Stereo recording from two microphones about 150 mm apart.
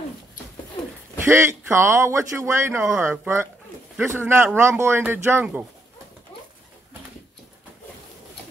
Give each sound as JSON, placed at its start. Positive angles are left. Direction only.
{"t": 1.2, "sound": "speech", "side_deg": -15}